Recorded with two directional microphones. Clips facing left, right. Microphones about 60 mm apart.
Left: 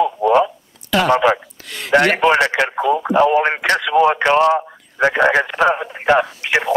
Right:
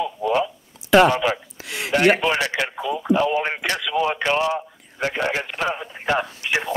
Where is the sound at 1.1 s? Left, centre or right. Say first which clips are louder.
Left 8 dB; left.